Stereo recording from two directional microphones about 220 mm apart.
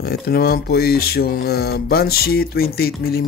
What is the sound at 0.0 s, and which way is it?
Speech, 45° left (ahead or behind).